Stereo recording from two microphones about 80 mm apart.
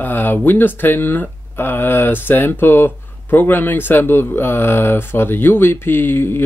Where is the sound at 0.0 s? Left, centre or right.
Left.